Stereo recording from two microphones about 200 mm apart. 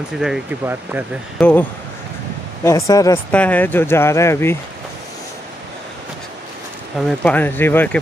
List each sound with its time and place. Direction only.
0.2 s speech: 5° right (ahead or behind)
1.4 s speech: 10° left (ahead or behind)
7.0 s speech: 5° left (ahead or behind)